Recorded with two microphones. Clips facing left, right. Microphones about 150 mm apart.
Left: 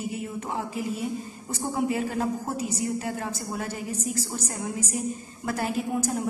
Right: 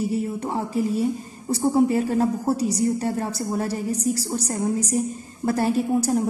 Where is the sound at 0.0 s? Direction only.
35° right (ahead or behind).